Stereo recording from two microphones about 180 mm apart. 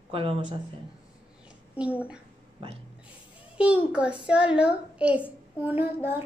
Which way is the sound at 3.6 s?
5° right (ahead or behind).